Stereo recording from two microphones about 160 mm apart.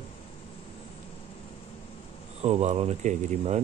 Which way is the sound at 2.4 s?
40° right (ahead or behind).